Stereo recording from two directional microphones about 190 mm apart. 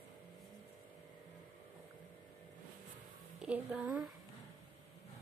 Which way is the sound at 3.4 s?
5° right (ahead or behind).